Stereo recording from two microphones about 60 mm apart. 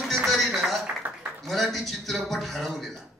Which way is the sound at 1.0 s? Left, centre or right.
Right.